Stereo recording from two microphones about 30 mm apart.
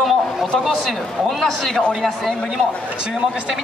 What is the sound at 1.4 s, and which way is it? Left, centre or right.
Speech, centre.